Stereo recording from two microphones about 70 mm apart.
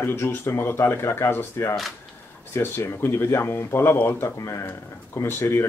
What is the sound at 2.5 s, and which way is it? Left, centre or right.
Speech, left.